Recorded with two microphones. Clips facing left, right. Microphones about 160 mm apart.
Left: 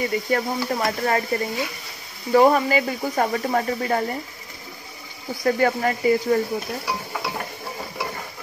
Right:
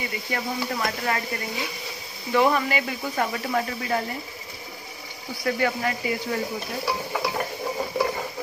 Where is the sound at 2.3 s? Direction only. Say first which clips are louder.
Left 5 dB; 40° left (ahead or behind).